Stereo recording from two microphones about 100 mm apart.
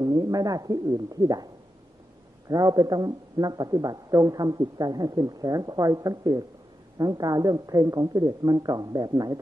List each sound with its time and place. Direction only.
0.0 s a man's voice: 40° right (ahead or behind)